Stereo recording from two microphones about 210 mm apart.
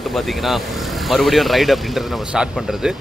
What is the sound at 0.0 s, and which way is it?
Speech, centre (ahead or behind).